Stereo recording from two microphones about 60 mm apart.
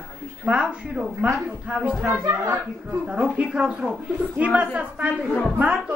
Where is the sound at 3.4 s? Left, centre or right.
Centre.